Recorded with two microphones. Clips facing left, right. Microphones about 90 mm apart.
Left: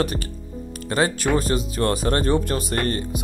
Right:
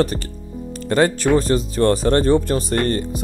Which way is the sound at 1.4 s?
35° right (ahead or behind).